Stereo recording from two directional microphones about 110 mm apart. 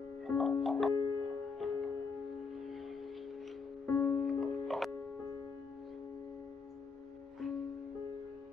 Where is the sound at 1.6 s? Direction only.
Centre (ahead or behind).